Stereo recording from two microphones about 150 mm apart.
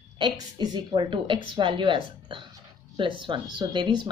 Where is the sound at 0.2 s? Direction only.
30° right (ahead or behind).